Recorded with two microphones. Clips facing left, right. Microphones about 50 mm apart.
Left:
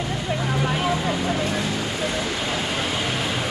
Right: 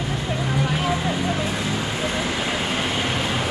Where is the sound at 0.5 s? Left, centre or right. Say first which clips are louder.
Even; centre.